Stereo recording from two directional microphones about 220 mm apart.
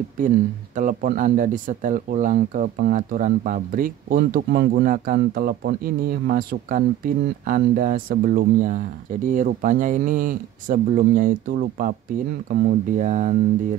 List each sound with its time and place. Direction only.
0.7 s speech: 35° right (ahead or behind)